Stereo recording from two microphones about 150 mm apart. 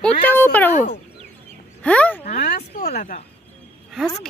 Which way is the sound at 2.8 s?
90° left.